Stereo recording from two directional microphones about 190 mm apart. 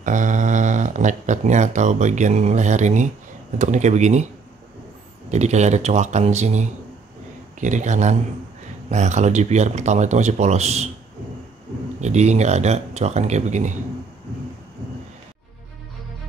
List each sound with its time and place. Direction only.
0.0 s speech: 40° right (ahead or behind)
5.3 s speech: 35° right (ahead or behind)
7.6 s speech: 40° right (ahead or behind)
12.0 s speech: 35° right (ahead or behind)